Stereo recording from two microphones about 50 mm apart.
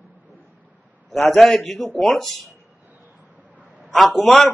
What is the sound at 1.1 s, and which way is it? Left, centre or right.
A man's voice, centre.